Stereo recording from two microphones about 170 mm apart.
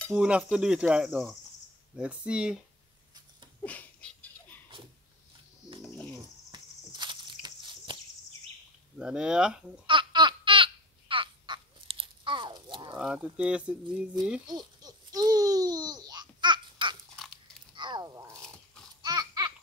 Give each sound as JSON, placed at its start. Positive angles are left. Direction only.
{"t": 0.1, "sound": "speech", "side_deg": -5}
{"t": 3.6, "sound": "a sound", "side_deg": 10}
{"t": 6.5, "sound": "a sound", "side_deg": -25}
{"t": 8.9, "sound": "speech", "side_deg": -5}
{"t": 9.8, "sound": "babbling", "side_deg": -30}
{"t": 13.0, "sound": "speech", "side_deg": -5}
{"t": 14.5, "sound": "babbling", "side_deg": -25}
{"t": 17.1, "sound": "dog", "side_deg": 5}
{"t": 17.7, "sound": "a sound", "side_deg": -25}
{"t": 19.0, "sound": "laughter", "side_deg": -25}